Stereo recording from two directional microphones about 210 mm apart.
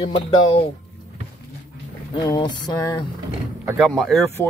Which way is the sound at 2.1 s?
20° left (ahead or behind).